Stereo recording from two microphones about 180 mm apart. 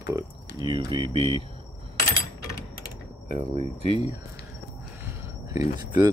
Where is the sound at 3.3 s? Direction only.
30° right (ahead or behind).